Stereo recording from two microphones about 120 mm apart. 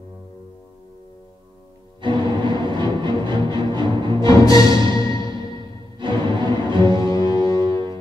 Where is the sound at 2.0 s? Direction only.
40° right (ahead or behind).